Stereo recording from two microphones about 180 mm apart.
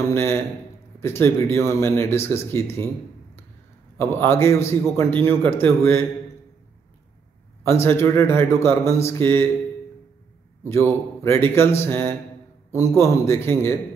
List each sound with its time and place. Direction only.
0.1 s a man's voice: 15° left (ahead or behind)
4.0 s a man's voice: 15° left (ahead or behind)
7.6 s a man's voice: 15° left (ahead or behind)
10.7 s a man's voice: 15° left (ahead or behind)